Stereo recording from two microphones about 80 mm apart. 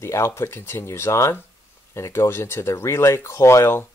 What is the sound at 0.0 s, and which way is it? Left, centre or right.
Speech, left.